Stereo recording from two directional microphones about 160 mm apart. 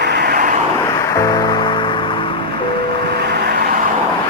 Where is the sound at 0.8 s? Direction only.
20° left (ahead or behind).